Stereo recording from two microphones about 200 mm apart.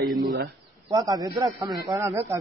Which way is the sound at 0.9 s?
20° right (ahead or behind).